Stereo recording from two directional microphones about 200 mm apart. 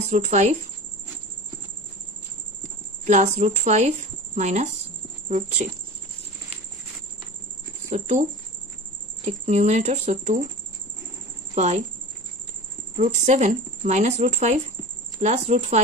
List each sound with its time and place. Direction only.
0.1 s speech: 35° right (ahead or behind)
3.1 s speech: 35° right (ahead or behind)
7.9 s speech: 35° right (ahead or behind)
11.5 s speech: 35° right (ahead or behind)
12.9 s speech: 35° right (ahead or behind)